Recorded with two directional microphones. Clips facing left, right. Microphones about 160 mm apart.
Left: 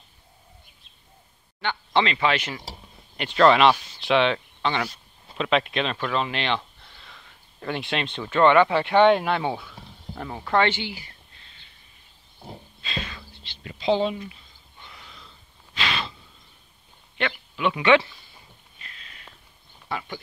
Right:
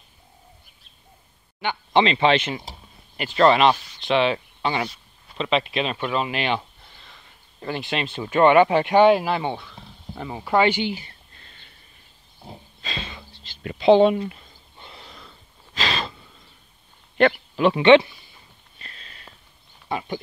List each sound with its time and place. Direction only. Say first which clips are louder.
1.9 s speech: right 5 dB; 25° right (ahead or behind)
3.2 s speech: even; centre (ahead or behind)
4.8 s speech: right 2 dB; centre (ahead or behind)
6.1 s a sound: right 2 dB; 10° right (ahead or behind)
8.2 s speech: right 2 dB; 15° right (ahead or behind)
11.3 s a sound: right 3 dB; 50° right (ahead or behind)
13.3 s a sound: even; 40° right (ahead or behind)
13.6 s speech: right 8 dB; 60° right (ahead or behind)
14.8 s gasp: right 3 dB; 30° right (ahead or behind)
15.7 s a sound: right 2 dB; 40° right (ahead or behind)
17.2 s speech: right 8 dB; 35° right (ahead or behind)
18.8 s sniff: right 3 dB; 35° right (ahead or behind)
19.9 s speech: right 4 dB; 20° right (ahead or behind)